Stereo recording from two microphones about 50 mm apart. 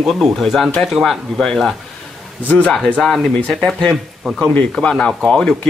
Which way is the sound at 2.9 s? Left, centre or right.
Centre.